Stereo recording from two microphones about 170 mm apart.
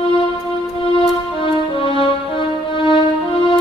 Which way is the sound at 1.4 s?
30° left (ahead or behind).